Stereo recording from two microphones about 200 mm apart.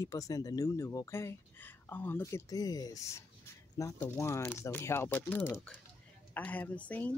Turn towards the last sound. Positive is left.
turn(degrees=5)  # may be behind; listen again after turning